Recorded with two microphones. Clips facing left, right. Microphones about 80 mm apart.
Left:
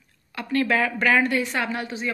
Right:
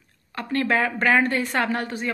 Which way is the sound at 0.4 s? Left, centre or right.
Right.